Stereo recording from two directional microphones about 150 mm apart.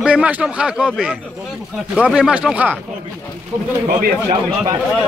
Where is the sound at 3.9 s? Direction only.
70° right (ahead or behind).